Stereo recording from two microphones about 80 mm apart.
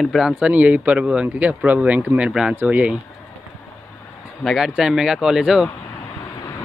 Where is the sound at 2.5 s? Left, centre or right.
Centre.